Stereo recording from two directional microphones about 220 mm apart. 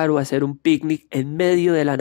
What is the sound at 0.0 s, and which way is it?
Speech, 45° left (ahead or behind).